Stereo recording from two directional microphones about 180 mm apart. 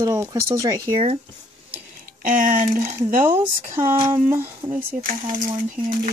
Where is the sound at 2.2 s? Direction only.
50° right (ahead or behind).